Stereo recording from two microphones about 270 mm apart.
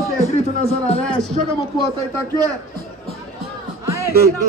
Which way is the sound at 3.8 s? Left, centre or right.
Centre.